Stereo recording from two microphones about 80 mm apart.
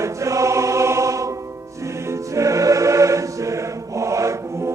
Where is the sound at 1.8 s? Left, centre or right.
Right.